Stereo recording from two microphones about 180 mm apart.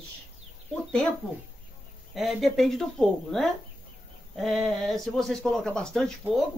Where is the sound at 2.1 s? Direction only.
Centre (ahead or behind).